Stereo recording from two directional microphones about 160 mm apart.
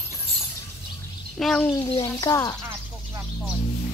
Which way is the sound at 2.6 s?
15° right (ahead or behind).